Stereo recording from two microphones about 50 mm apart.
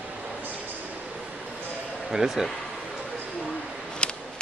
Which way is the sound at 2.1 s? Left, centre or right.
Centre.